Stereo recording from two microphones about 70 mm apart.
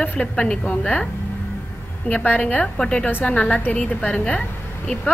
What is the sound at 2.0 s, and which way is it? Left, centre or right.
Speech, left.